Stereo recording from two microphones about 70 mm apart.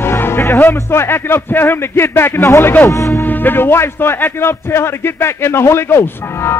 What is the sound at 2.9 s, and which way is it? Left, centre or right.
Speech, left.